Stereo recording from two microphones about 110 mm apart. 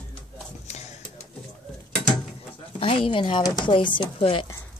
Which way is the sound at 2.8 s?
55° left (ahead or behind).